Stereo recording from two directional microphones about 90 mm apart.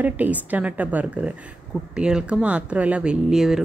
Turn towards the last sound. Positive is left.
turn(degrees=-5)  # may be behind; listen again after turning